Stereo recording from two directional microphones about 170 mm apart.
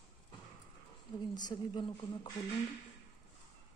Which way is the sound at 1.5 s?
30° left (ahead or behind).